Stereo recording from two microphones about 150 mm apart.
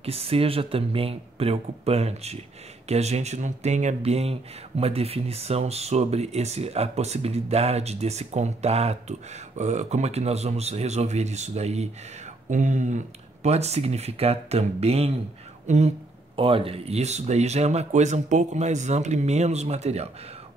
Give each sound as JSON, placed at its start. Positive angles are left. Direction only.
{"t": 0.0, "sound": "speech", "side_deg": -40}
{"t": 16.3, "sound": "speech", "side_deg": -35}